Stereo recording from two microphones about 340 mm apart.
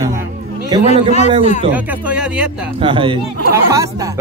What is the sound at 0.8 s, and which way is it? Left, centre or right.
Speech, centre.